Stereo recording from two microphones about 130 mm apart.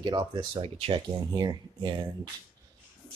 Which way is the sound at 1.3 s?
35° right (ahead or behind).